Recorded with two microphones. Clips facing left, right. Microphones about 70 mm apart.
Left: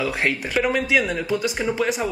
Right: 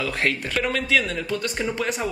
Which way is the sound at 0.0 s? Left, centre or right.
Centre.